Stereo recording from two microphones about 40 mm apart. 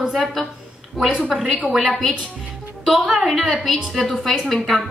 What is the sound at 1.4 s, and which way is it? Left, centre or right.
Speech, centre.